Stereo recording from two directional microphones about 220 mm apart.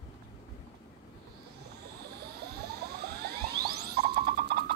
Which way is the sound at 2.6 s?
45° right (ahead or behind).